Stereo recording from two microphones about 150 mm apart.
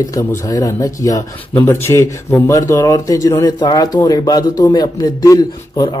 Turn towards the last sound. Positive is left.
turn(degrees=25)  # may be behind; listen again after turning